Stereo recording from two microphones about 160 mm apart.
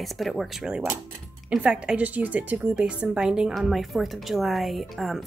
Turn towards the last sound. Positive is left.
turn(degrees=0)  # may be behind; listen again after turning